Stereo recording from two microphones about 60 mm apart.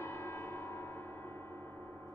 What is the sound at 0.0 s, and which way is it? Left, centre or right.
Gong, left.